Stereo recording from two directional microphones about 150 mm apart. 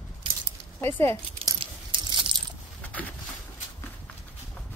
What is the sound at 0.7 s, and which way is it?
Speech, 15° left (ahead or behind).